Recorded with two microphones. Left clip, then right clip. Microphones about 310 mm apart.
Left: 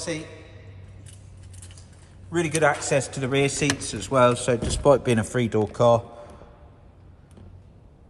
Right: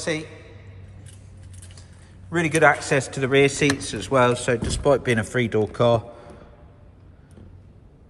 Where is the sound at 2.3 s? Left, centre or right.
Centre.